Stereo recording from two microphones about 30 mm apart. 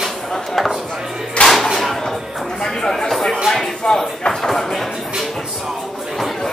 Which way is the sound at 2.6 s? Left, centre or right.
Centre.